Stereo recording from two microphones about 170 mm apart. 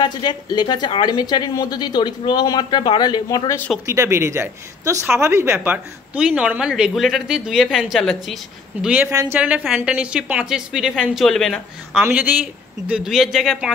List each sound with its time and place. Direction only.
0.0 s a woman's voice: 25° left (ahead or behind)
3.8 s speech: 15° right (ahead or behind); by 8.4 s centre (ahead or behind)
8.8 s speech: 10° right (ahead or behind)
12.0 s speech: 10° right (ahead or behind)